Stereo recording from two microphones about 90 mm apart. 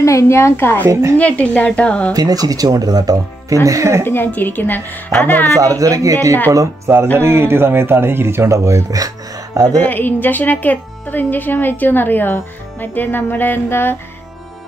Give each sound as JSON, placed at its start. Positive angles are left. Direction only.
{"t": 0.0, "sound": "speech", "side_deg": 35}
{"t": 1.1, "sound": "speech", "side_deg": 15}
{"t": 2.1, "sound": "speech", "side_deg": -45}
{"t": 4.0, "sound": "speech", "side_deg": 25}
{"t": 5.5, "sound": "speech", "side_deg": -40}
{"t": 9.8, "sound": "speech", "side_deg": 20}